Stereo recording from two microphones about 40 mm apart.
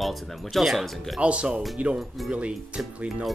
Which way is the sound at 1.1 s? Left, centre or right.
Right.